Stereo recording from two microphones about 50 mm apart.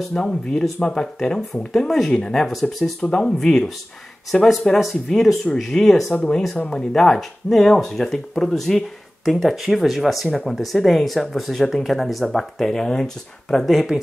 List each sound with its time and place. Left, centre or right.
0.1 s speech: centre
2.8 s speech: centre